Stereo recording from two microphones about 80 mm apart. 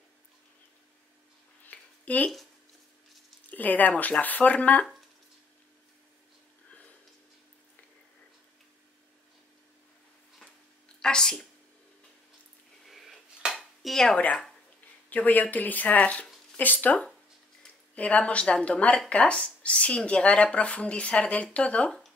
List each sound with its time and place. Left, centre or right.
1.7 s a sound: centre
3.4 s speech: left
11.0 s speech: centre
12.8 s a sound: centre
13.6 s dishes: centre
15.0 s speech: left